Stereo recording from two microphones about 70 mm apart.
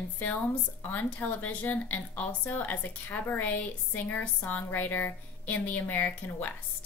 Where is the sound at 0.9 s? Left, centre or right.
Left.